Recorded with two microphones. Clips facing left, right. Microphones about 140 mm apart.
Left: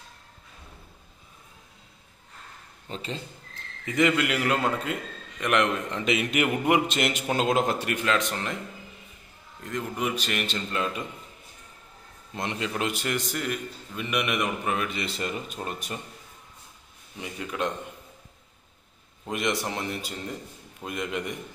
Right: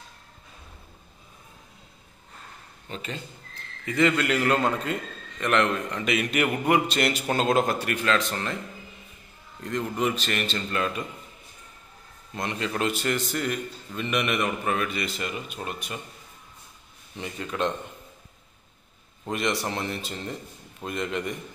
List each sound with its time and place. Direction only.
2.9 s a man's voice: 30° left (ahead or behind)
9.6 s a man's voice: 5° left (ahead or behind)
12.4 s a man's voice: 25° left (ahead or behind)
12.6 s a man's voice: 15° left (ahead or behind); by 16.0 s 35° left (ahead or behind)
17.2 s a man's voice: 10° left (ahead or behind)
19.2 s a man's voice: 15° left (ahead or behind)